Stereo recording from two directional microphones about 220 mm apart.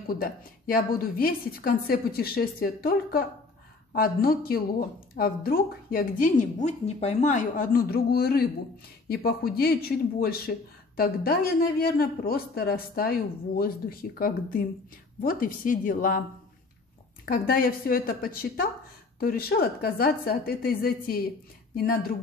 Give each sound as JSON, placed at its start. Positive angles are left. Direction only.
{"t": 0.1, "sound": "a woman's voice", "side_deg": 40}
{"t": 17.3, "sound": "speech", "side_deg": 40}